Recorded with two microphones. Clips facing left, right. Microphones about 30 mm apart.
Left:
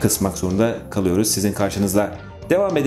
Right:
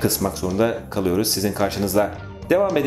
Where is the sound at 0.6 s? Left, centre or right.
Right.